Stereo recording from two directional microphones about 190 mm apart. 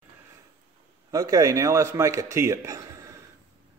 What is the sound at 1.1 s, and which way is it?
A man's voice, 15° right (ahead or behind).